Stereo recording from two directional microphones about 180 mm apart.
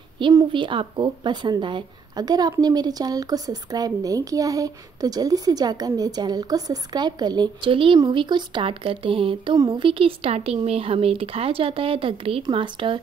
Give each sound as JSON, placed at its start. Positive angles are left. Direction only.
{"t": 0.2, "sound": "speech", "side_deg": -25}